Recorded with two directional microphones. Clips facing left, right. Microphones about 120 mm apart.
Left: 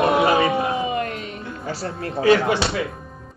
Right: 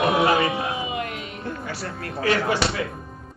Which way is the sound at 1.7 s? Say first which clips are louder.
Left 4 dB; 25° left (ahead or behind).